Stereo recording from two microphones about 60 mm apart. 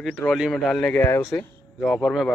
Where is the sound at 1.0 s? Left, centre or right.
Left.